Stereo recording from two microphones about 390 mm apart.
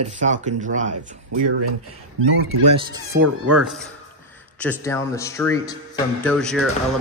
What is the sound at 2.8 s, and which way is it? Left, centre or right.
A man's voice, centre.